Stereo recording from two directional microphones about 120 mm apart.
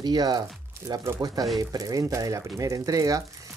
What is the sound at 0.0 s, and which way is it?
Speech, 35° right (ahead or behind).